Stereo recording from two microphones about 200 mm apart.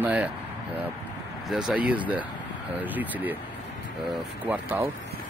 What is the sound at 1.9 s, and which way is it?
Speech, 5° right (ahead or behind).